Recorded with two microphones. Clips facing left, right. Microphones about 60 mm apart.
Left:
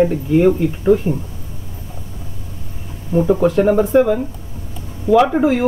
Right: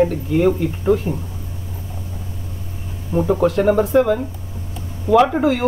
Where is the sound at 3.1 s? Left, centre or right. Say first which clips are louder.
Left 2 dB; centre.